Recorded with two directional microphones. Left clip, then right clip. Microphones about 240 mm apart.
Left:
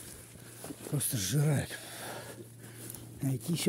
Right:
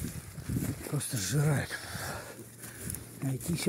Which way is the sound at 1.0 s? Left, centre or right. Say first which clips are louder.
Even; centre.